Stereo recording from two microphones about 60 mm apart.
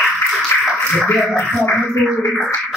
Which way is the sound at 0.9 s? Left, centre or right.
Centre.